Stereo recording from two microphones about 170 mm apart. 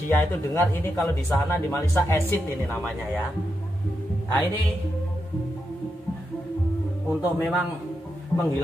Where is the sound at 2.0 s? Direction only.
15° left (ahead or behind).